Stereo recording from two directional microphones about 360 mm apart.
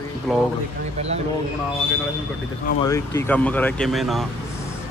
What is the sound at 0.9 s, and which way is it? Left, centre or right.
Speech, centre.